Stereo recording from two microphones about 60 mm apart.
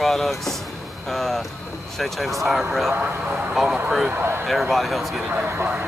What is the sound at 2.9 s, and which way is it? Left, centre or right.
Speech, right.